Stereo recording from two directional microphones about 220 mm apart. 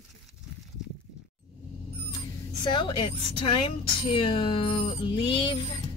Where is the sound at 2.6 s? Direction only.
20° left (ahead or behind).